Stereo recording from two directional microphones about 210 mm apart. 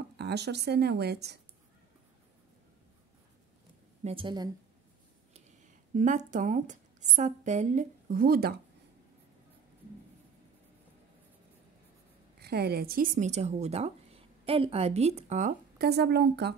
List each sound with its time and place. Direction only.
0.2 s speech: 50° right (ahead or behind)
4.0 s a woman's voice: 25° right (ahead or behind)
5.9 s speech: 35° right (ahead or behind)
12.4 s speech: 50° right (ahead or behind)